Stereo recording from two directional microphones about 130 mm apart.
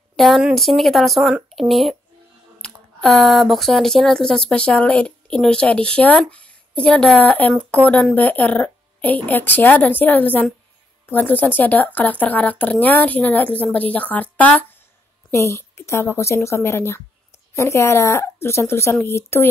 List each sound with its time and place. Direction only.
0.1 s speech: centre (ahead or behind); by 19.4 s 20° left (ahead or behind)